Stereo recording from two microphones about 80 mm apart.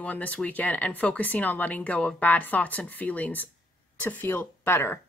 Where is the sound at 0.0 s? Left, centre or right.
Centre.